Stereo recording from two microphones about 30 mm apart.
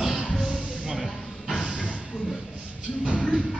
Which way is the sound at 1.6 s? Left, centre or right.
Right.